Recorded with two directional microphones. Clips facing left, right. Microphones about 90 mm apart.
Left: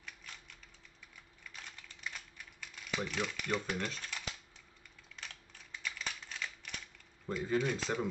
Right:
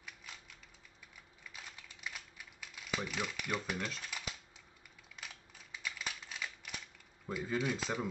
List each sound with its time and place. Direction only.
0.0 s typing: 10° right (ahead or behind)
1.5 s typing: 10° right (ahead or behind)
5.1 s a sound: 10° right (ahead or behind)
7.2 s speech: 5° right (ahead or behind)